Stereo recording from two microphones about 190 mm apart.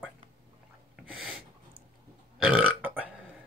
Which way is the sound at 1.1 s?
5° right (ahead or behind).